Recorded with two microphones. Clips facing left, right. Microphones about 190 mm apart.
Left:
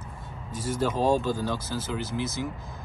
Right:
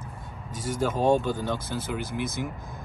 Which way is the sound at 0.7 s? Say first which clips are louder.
Even; 10° right (ahead or behind).